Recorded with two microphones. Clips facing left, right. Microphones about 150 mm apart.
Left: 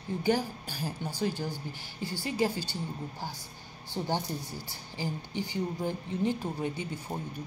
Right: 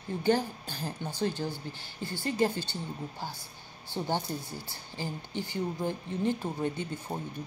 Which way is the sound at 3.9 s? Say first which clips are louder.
Even; 15° left (ahead or behind).